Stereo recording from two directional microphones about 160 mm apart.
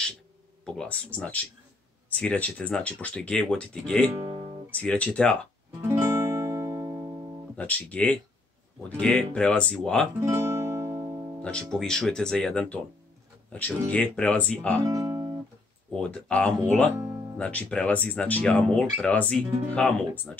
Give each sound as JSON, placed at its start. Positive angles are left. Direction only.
{"t": 0.7, "sound": "speech", "side_deg": 10}
{"t": 5.8, "sound": "music", "side_deg": -15}
{"t": 7.5, "sound": "speech", "side_deg": 10}
{"t": 10.2, "sound": "music", "side_deg": -15}
{"t": 11.4, "sound": "speech", "side_deg": 5}
{"t": 14.9, "sound": "guitar", "side_deg": -20}
{"t": 15.9, "sound": "speech", "side_deg": 5}